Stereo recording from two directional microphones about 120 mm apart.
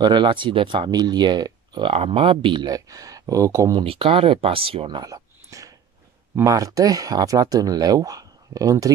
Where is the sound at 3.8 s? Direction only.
50° right (ahead or behind).